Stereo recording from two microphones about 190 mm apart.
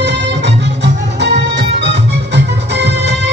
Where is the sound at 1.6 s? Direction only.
65° right (ahead or behind).